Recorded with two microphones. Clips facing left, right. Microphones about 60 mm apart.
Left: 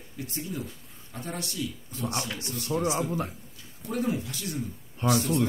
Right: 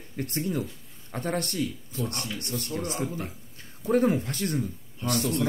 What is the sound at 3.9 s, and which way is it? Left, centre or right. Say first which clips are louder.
Speech: right 6 dB; right.